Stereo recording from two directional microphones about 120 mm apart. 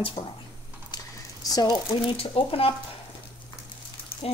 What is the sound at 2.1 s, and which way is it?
Speech, 50° left (ahead or behind).